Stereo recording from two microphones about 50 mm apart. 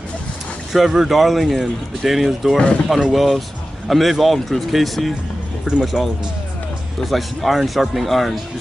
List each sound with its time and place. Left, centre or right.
0.7 s speech: centre
2.5 s speech: left
2.9 s speech: centre